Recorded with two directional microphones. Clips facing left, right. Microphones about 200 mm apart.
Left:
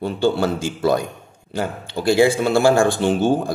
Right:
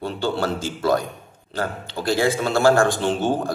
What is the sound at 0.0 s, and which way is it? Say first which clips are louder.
A man's voice: left 5 dB; 10° left (ahead or behind).